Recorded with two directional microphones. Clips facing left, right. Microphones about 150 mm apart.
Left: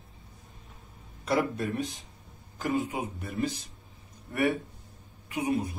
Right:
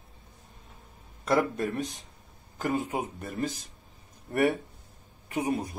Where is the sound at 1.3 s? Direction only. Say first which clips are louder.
Right 2 dB; 50° right (ahead or behind).